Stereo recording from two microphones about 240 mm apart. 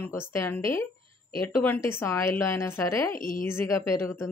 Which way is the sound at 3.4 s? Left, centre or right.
Centre.